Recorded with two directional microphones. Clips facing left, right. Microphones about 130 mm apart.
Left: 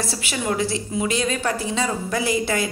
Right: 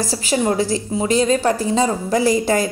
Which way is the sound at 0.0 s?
40° right (ahead or behind).